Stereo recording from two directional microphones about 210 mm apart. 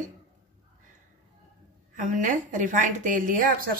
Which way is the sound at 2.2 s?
40° right (ahead or behind).